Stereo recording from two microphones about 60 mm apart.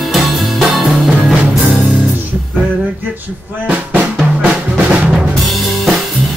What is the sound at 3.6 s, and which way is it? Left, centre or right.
Drum, right.